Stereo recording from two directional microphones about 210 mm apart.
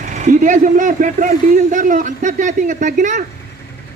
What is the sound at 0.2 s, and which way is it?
A man's voice, 35° right (ahead or behind).